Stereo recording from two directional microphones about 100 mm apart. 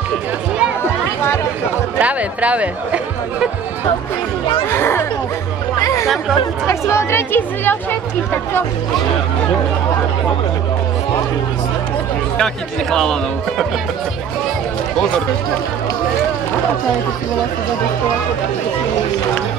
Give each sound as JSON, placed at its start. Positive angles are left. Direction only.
{"t": 2.0, "sound": "speech", "side_deg": -15}
{"t": 4.6, "sound": "speech", "side_deg": 25}
{"t": 5.8, "sound": "chatter", "side_deg": 30}
{"t": 6.7, "sound": "speech", "side_deg": 25}
{"t": 12.9, "sound": "speech", "side_deg": 5}